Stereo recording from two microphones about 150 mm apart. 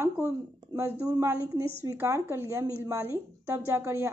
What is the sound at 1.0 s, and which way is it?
A woman's voice, 25° right (ahead or behind).